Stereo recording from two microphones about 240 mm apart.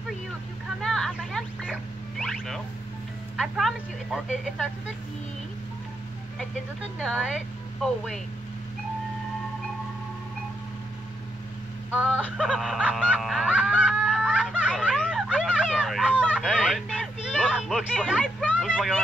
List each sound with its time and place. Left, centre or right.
0.7 s a sound: centre
3.3 s a woman's voice: centre
7.0 s speech: centre
11.9 s music: centre